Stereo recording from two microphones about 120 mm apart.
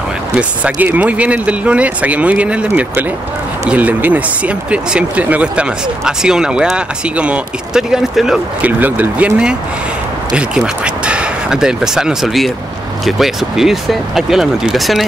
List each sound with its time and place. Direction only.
0.4 s speech: 10° right (ahead or behind)